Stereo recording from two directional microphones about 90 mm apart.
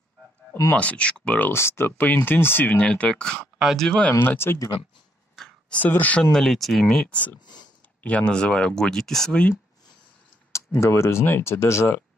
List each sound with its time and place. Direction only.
0.7 s speech: 15° left (ahead or behind)
1.5 s speech: 25° left (ahead or behind); by 4.1 s 5° left (ahead or behind)
4.2 s speech: 25° left (ahead or behind)
5.4 s a sound: 10° left (ahead or behind)
5.9 s speech: 20° left (ahead or behind)
6.3 s speech: 5° left (ahead or behind)
7.3 s speech: 55° left (ahead or behind)
8.0 s speech: 15° left (ahead or behind)
10.5 s speech: 30° left (ahead or behind)